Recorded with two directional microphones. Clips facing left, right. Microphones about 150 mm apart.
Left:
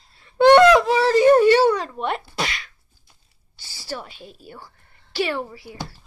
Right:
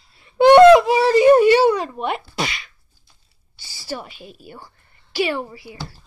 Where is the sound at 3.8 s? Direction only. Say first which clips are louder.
Right 2 dB; 5° right (ahead or behind).